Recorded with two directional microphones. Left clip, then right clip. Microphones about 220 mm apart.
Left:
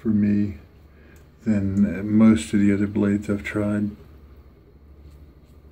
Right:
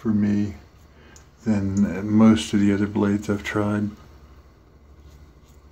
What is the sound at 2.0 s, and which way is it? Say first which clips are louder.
Speech: right 1 dB; 50° right (ahead or behind).